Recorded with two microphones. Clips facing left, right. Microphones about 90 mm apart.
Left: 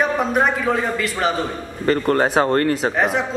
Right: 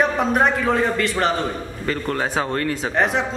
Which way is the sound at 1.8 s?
50° left (ahead or behind).